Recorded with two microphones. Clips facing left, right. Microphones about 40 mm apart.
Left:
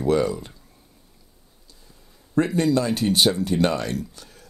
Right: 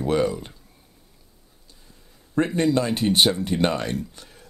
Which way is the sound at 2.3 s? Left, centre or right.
Right.